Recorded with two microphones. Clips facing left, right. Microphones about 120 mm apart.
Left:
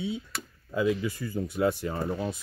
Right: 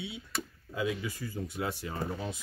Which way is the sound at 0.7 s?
50° left (ahead or behind).